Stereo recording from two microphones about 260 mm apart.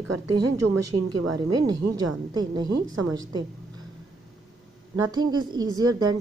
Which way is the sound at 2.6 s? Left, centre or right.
Right.